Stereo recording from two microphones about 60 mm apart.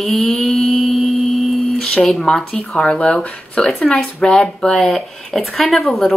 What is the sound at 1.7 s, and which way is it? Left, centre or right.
Speech, centre.